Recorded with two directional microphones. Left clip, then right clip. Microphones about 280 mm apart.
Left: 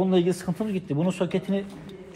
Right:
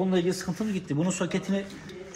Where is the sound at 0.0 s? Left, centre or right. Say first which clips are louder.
Left 3 dB; left.